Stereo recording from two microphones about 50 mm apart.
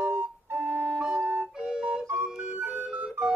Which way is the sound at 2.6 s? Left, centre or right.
Right.